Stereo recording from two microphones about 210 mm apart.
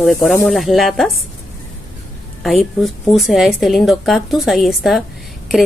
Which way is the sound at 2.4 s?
Centre (ahead or behind).